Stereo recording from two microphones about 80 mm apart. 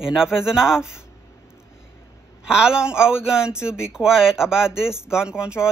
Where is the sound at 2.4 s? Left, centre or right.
Centre.